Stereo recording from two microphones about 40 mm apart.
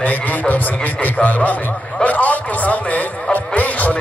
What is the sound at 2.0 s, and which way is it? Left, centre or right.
Music, left.